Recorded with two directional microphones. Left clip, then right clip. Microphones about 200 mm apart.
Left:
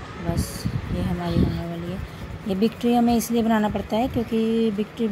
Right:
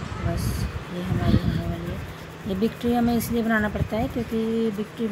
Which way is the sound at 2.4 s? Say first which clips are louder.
Left 3 dB; 15° left (ahead or behind).